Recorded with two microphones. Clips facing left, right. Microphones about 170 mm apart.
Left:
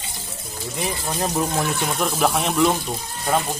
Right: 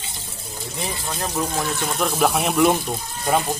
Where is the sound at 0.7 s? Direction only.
25° left (ahead or behind).